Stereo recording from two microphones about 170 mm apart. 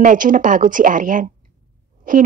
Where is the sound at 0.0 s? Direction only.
50° right (ahead or behind).